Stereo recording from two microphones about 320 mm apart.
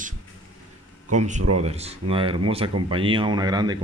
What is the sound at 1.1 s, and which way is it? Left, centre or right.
Speech, right.